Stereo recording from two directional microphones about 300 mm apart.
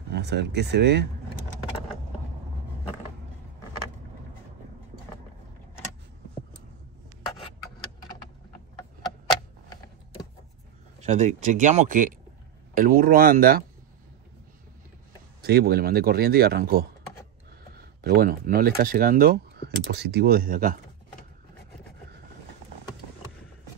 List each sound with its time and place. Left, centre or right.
0.1 s speech: right
11.0 s speech: right
15.4 s speech: right